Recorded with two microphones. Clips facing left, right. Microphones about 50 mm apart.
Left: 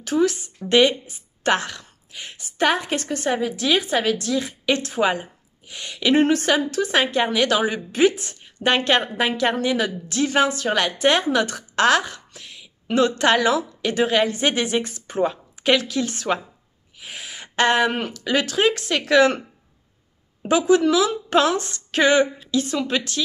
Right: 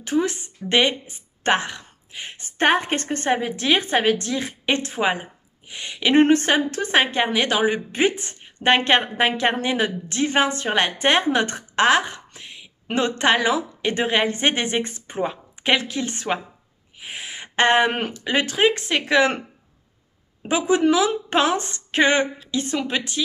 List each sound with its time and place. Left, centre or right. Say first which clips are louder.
0.0 s a woman's voice: left 2 dB; right
6.1 s a woman's voice: right 2 dB; right
20.4 s a woman's voice: left 2 dB; right